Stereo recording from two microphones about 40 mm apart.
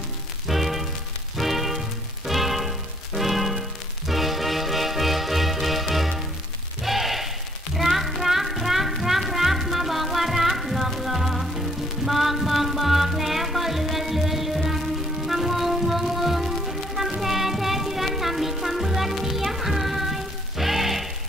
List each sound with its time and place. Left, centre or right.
0.5 s music: centre
6.8 s a sound: centre
7.7 s music: centre